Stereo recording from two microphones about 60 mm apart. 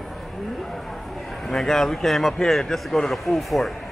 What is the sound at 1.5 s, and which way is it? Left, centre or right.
Speech, centre.